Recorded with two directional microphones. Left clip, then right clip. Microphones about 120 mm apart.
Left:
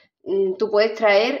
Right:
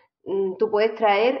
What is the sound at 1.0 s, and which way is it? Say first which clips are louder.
Speech: left 2 dB; 20° left (ahead or behind).